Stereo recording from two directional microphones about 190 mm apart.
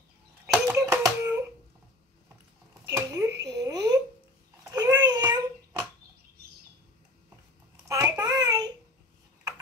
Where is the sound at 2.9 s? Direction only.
15° right (ahead or behind).